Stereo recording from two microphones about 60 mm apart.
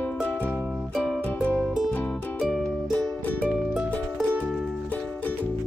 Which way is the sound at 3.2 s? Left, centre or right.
Left.